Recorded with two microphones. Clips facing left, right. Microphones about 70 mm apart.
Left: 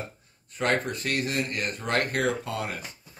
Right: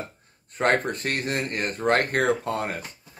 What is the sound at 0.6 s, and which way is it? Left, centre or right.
Speech, right.